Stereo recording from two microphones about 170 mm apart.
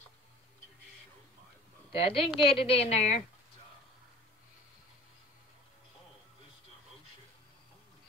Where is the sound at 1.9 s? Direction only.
35° left (ahead or behind).